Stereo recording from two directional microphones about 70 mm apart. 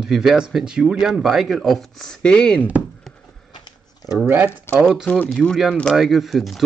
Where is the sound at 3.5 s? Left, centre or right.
Left.